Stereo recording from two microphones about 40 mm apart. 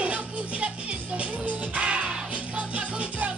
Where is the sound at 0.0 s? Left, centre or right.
Right.